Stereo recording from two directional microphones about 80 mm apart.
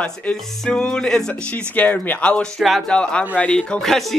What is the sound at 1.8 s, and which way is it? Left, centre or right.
Speech, centre.